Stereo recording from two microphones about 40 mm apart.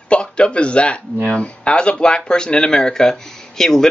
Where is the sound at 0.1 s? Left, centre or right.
Left.